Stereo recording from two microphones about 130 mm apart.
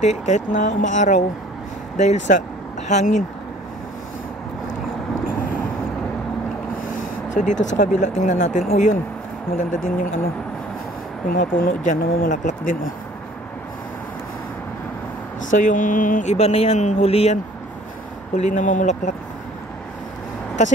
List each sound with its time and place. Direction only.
0.0 s speech: 65° left (ahead or behind)
6.8 s speech: 90° left; by 8.9 s 70° left (ahead or behind)
9.5 s speech: 90° left
11.2 s speech: 90° left
15.5 s speech: 90° left
16.3 s speech: 55° left (ahead or behind)
18.3 s speech: 70° left (ahead or behind)